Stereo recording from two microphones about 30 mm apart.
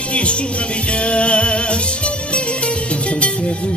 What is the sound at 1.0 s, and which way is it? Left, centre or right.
Music, left.